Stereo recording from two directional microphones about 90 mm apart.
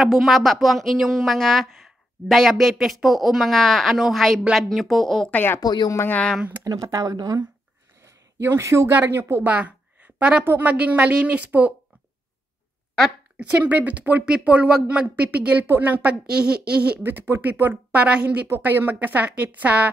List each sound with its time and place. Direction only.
0.0 s speech: centre (ahead or behind)
5.3 s speech: 25° left (ahead or behind)
5.6 s speech: 50° left (ahead or behind)
5.9 s speech: 20° left (ahead or behind)
6.6 s speech: 45° right (ahead or behind)
8.0 s a sound: 30° right (ahead or behind)
8.9 s speech: 20° right (ahead or behind)
13.4 s speech: 15° right (ahead or behind)